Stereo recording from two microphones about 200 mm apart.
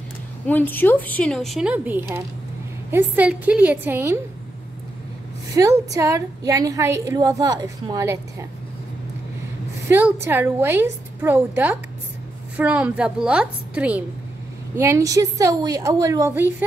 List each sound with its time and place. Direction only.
0.5 s a woman's voice: 10° left (ahead or behind); by 4.2 s 10° right (ahead or behind)
5.6 s a woman's voice: 15° right (ahead or behind)
9.8 s a woman's voice: 10° right (ahead or behind)